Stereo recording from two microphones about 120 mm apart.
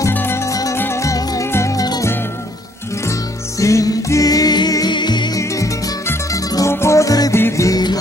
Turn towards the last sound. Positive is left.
turn(degrees=30)  # may be behind; listen again after turning